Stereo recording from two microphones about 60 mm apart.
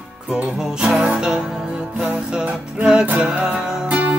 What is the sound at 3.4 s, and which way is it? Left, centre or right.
Music, centre.